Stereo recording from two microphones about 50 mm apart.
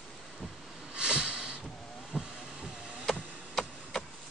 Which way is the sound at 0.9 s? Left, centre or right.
Centre.